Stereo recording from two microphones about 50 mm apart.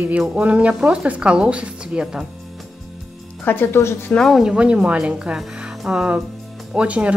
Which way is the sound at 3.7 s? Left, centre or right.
Left.